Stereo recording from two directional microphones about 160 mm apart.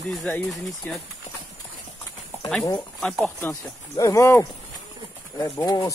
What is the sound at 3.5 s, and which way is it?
Speech, 20° left (ahead or behind).